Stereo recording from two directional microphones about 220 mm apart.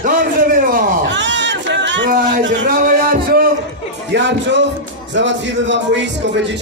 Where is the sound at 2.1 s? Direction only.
35° right (ahead or behind).